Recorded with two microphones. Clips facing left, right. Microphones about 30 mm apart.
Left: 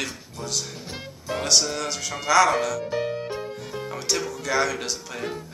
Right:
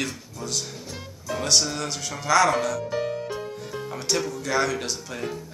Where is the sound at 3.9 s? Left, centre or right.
Centre.